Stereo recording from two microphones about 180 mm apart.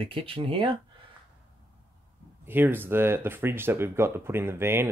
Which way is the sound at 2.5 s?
10° right (ahead or behind).